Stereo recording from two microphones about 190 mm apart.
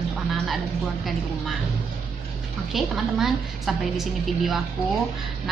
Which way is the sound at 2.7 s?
Centre (ahead or behind).